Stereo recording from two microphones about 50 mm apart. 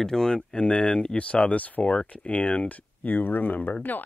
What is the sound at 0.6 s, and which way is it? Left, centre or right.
Speech, left.